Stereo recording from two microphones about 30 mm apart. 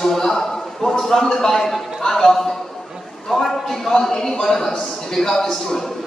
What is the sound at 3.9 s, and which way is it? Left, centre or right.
A woman's voice, centre.